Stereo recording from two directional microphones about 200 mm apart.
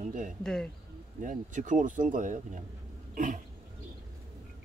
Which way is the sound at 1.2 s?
40° right (ahead or behind).